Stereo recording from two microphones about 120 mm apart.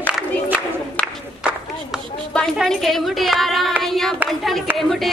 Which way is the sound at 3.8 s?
Centre (ahead or behind).